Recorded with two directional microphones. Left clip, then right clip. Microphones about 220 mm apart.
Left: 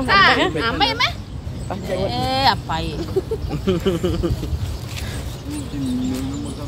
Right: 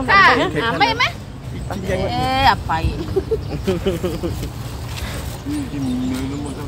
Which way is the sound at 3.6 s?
55° left (ahead or behind).